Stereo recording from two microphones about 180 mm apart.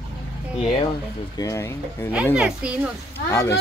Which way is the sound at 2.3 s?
5° right (ahead or behind).